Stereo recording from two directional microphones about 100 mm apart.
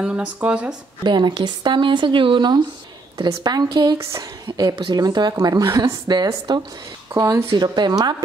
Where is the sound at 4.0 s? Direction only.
30° right (ahead or behind).